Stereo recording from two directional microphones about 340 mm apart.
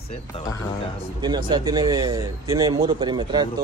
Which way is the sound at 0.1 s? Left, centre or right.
Centre.